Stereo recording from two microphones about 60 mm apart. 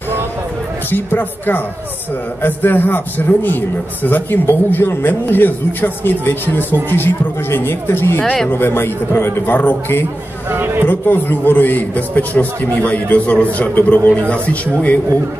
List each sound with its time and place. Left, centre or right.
0.8 s a man's voice: left
10.5 s speech: right
10.9 s a man's voice: left